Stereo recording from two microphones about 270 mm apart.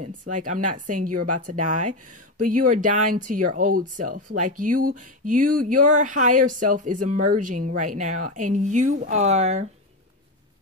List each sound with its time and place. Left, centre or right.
0.0 s speech: right